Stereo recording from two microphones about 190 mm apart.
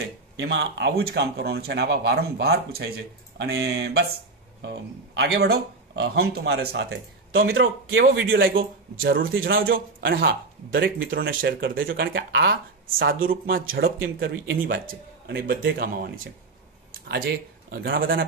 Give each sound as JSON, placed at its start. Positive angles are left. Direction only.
{"t": 0.4, "sound": "speech", "side_deg": -70}
{"t": 5.1, "sound": "speech", "side_deg": -65}
{"t": 7.9, "sound": "a man's voice", "side_deg": -70}
{"t": 9.0, "sound": "a man's voice", "side_deg": -55}
{"t": 12.1, "sound": "a man's voice", "side_deg": -65}
{"t": 17.6, "sound": "speech", "side_deg": -55}